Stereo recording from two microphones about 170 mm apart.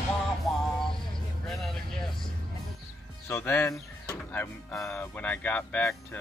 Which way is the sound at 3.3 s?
15° left (ahead or behind).